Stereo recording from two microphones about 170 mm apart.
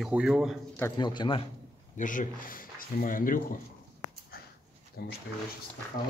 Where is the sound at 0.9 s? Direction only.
25° left (ahead or behind).